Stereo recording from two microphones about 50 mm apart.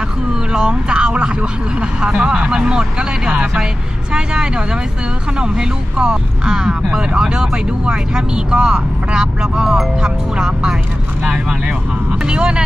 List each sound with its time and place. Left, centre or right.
0.5 s speech: centre